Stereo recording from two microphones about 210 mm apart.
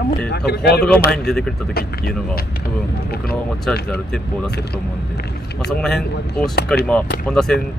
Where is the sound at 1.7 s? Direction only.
45° left (ahead or behind).